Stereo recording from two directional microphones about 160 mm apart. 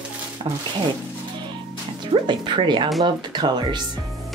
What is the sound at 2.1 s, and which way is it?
Speech, 30° right (ahead or behind).